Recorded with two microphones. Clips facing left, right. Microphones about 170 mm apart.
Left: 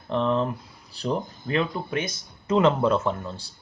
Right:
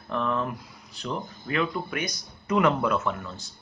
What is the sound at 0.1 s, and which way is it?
Speech, 25° left (ahead or behind).